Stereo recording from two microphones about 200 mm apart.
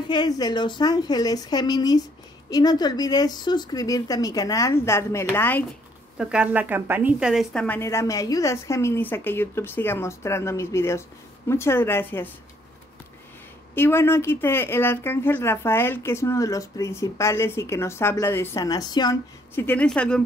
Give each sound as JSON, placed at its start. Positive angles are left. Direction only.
{"t": 0.1, "sound": "speech", "side_deg": 20}
{"t": 6.1, "sound": "speech", "side_deg": -5}
{"t": 13.7, "sound": "speech", "side_deg": 10}